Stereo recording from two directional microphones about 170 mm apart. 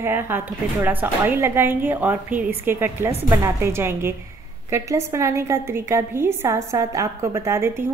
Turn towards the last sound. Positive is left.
turn(degrees=-15)  # may be behind; listen again after turning